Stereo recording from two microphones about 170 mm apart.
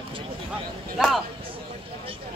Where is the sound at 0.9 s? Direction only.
Centre (ahead or behind).